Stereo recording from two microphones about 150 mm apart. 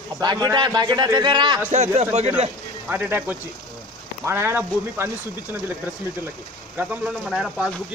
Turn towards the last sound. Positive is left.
turn(degrees=-5)  # may be behind; listen again after turning